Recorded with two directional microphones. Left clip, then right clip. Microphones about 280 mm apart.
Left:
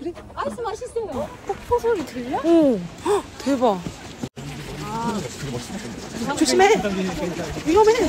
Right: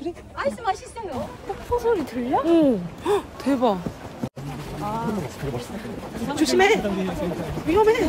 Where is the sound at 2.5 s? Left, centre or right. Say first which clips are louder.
Left 4 dB; centre.